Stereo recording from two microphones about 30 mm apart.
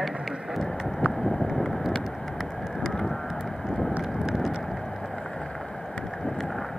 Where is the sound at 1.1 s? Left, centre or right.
Centre.